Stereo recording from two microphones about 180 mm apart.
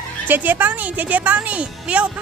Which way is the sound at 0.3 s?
10° right (ahead or behind).